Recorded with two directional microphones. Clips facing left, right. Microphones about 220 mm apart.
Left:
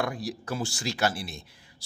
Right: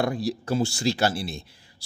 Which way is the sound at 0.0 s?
30° right (ahead or behind).